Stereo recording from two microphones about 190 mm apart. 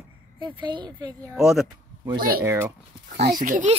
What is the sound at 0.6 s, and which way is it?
Speech, 25° right (ahead or behind).